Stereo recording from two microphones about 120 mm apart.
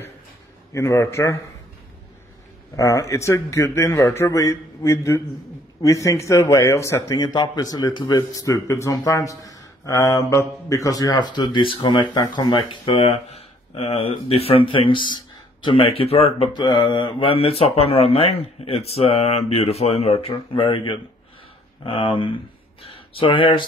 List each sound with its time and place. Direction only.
0.7 s speech: 25° left (ahead or behind)
2.7 s speech: 25° left (ahead or behind)
7.2 s speech: 35° left (ahead or behind); by 16.4 s 55° left (ahead or behind)
16.5 s speech: 40° left (ahead or behind)